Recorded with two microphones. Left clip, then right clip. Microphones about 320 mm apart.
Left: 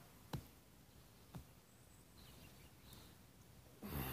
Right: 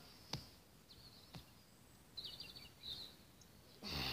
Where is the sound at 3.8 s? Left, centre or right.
Centre.